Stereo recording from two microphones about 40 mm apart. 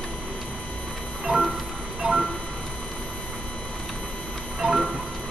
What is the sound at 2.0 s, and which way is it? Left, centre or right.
Train, centre.